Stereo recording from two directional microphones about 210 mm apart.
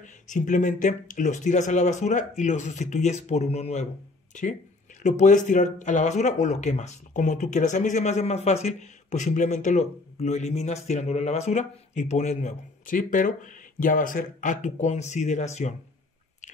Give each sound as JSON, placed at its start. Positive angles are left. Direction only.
{"t": 0.0, "sound": "speech", "side_deg": 35}